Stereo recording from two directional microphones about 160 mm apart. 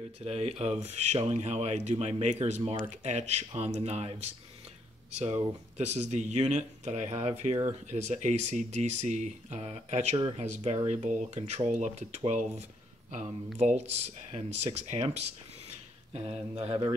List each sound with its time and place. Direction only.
0.2 s speech: 40° right (ahead or behind)
5.8 s speech: 45° right (ahead or behind)